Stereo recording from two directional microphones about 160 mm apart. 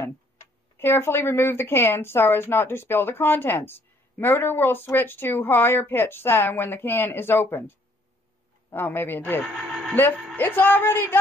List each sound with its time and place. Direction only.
0.7 s speech: 15° left (ahead or behind)
9.5 s a sound: 5° right (ahead or behind)
10.3 s speech: 10° left (ahead or behind)